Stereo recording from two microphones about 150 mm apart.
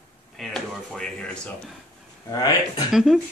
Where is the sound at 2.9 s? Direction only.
Centre (ahead or behind).